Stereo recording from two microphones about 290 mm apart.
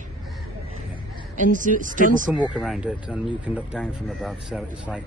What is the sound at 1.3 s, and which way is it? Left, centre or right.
Speech, right.